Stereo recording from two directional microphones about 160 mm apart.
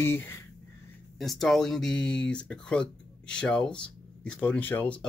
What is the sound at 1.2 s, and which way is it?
Speech, centre (ahead or behind).